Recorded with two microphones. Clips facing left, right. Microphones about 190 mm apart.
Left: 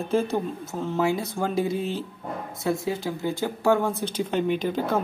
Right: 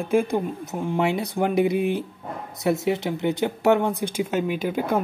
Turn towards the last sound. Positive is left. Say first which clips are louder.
# right 1 dB
turn(degrees=-10)  # may be behind; listen again after turning